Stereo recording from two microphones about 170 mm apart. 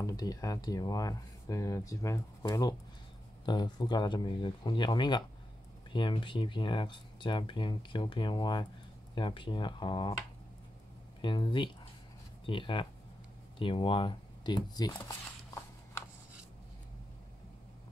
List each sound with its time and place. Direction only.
0.0 s speech: 20° left (ahead or behind)
11.1 s speech: 30° left (ahead or behind)